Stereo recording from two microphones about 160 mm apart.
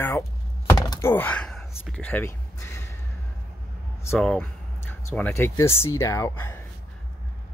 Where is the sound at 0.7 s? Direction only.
20° left (ahead or behind).